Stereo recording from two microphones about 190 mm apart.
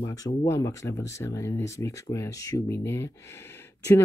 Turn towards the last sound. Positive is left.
turn(degrees=15)  # may be behind; listen again after turning